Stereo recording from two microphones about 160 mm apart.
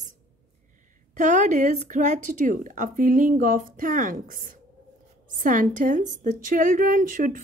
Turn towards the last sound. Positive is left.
turn(degrees=-60)  # may be behind; listen again after turning